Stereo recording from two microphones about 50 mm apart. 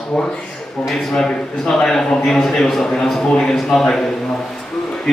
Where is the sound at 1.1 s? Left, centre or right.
Centre.